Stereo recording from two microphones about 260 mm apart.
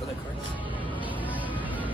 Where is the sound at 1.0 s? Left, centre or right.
Centre.